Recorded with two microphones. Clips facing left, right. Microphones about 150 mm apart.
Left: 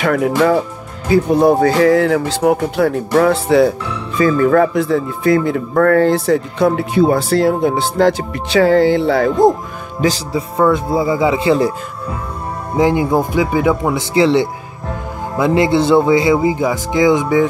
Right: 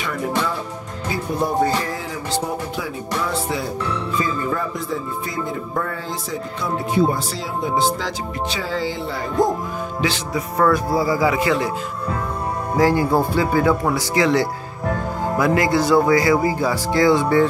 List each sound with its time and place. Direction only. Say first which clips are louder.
0.0 s speech: left 10 dB; 75° left (ahead or behind)
10.0 s music: left 7 dB; 35° left (ahead or behind)
10.6 s speech: left 4 dB; 20° left (ahead or behind)
12.7 s speech: left 3 dB; 20° left (ahead or behind)